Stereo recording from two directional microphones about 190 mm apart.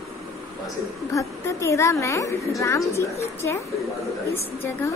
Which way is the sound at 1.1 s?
15° left (ahead or behind).